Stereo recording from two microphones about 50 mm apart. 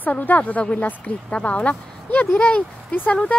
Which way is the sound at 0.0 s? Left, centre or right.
Left.